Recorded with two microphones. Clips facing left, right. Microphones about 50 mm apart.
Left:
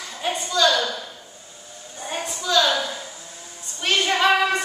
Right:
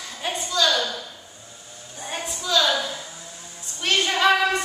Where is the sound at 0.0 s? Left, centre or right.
Centre.